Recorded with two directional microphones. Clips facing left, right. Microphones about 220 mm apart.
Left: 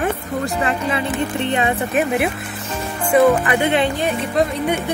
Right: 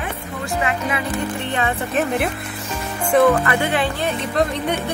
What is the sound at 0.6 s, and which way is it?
Speech, 30° left (ahead or behind).